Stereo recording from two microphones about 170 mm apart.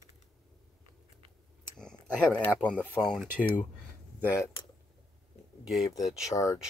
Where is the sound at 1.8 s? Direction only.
5° left (ahead or behind).